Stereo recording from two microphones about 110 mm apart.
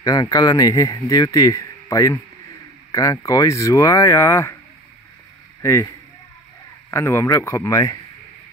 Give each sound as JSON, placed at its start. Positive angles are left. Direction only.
{"t": 0.0, "sound": "speech", "side_deg": 35}
{"t": 5.6, "sound": "speech", "side_deg": 25}